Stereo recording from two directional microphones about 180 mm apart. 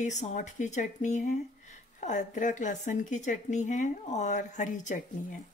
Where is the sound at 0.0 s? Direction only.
40° left (ahead or behind).